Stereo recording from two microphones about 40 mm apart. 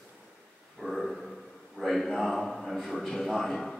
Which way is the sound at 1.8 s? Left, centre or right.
Centre.